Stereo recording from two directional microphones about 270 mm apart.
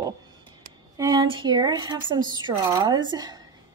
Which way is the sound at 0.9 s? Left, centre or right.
Centre.